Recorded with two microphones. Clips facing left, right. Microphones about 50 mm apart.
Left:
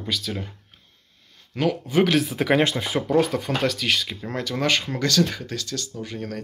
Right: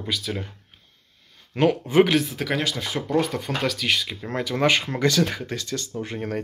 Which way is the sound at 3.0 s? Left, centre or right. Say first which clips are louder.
Left 2 dB; centre.